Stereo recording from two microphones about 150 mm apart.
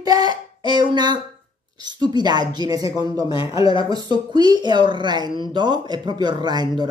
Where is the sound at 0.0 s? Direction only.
25° right (ahead or behind).